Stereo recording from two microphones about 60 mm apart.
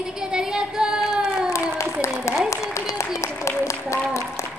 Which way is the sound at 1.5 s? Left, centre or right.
Left.